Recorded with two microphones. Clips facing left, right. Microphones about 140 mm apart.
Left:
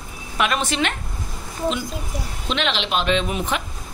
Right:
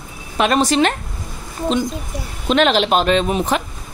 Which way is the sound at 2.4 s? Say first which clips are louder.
Right 10 dB; 45° right (ahead or behind).